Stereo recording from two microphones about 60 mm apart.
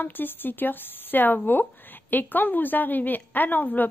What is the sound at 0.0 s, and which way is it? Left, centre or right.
A woman's voice, left.